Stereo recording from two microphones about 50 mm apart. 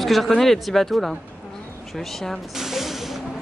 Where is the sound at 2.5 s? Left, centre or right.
Centre.